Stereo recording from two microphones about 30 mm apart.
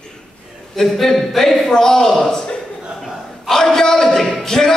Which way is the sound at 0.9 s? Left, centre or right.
Centre.